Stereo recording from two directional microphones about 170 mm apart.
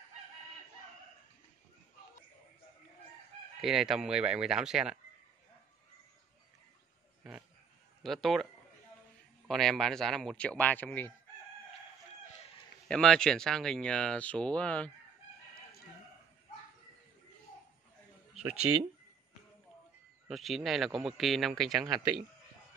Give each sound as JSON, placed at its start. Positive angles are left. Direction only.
{"t": 3.6, "sound": "speech", "side_deg": 0}
{"t": 8.0, "sound": "speech", "side_deg": 0}
{"t": 9.5, "sound": "speech", "side_deg": 0}
{"t": 12.8, "sound": "speech", "side_deg": 5}
{"t": 18.7, "sound": "speech", "side_deg": -20}
{"t": 20.2, "sound": "speech", "side_deg": 0}